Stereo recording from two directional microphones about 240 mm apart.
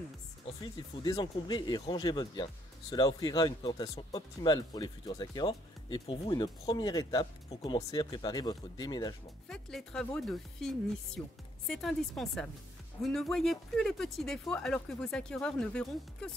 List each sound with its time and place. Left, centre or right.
0.5 s speech: centre
9.5 s speech: centre